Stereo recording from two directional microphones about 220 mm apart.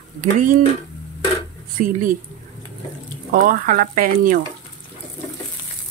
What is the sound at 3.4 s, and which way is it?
Speech, 40° right (ahead or behind).